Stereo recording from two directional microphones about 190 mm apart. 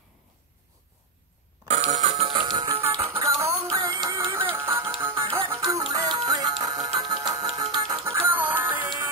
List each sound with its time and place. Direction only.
1.7 s music: 35° right (ahead or behind); by 8.9 s 10° right (ahead or behind)